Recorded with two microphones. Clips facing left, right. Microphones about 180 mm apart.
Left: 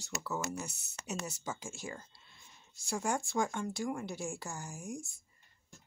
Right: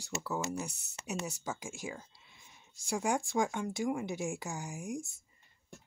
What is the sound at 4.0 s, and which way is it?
Speech, 20° right (ahead or behind).